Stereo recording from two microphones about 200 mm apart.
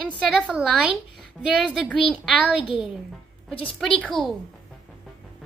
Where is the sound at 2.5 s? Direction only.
25° left (ahead or behind).